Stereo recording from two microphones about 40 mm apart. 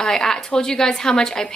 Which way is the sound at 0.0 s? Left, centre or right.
Centre.